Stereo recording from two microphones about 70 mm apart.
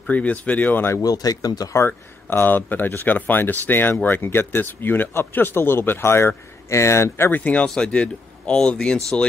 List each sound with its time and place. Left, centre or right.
0.1 s speech: left
1.0 s speech: left
1.8 s speech: left
7.3 s speech: centre